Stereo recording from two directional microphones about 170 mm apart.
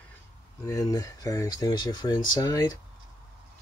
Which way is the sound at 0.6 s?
20° left (ahead or behind).